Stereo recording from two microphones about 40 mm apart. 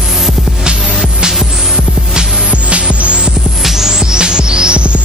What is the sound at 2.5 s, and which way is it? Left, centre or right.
Music, right.